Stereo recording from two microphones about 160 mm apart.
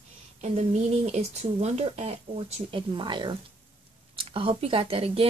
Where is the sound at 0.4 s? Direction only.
45° right (ahead or behind).